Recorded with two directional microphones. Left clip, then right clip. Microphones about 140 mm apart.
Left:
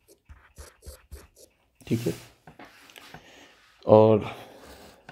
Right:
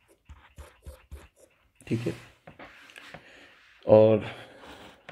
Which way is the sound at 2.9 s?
40° left (ahead or behind).